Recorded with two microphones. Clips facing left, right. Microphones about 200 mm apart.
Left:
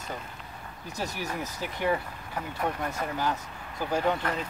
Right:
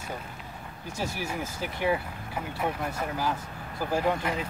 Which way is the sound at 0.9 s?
10° right (ahead or behind).